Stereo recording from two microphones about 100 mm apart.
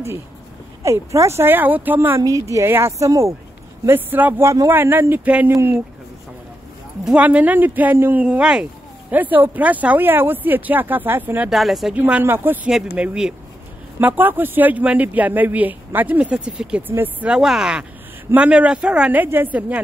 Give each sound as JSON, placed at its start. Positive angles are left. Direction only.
{"t": 0.8, "sound": "speech", "side_deg": -30}
{"t": 7.1, "sound": "speech", "side_deg": -15}
{"t": 11.5, "sound": "speech", "side_deg": 0}
{"t": 11.9, "sound": "speech", "side_deg": -15}
{"t": 16.8, "sound": "speech", "side_deg": -20}
{"t": 17.3, "sound": "speech", "side_deg": -5}